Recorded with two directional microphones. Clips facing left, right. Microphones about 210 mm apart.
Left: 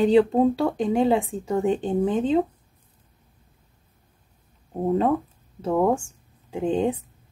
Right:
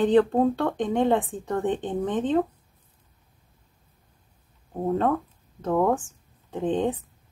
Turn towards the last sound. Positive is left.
turn(degrees=10)  # may be behind; listen again after turning